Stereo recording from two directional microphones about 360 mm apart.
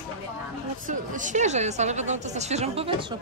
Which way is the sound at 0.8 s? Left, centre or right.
Right.